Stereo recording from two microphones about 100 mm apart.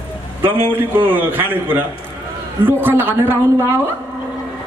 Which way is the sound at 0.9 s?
20° right (ahead or behind).